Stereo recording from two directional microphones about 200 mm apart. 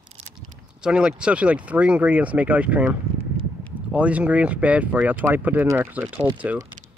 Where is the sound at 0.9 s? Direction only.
5° right (ahead or behind).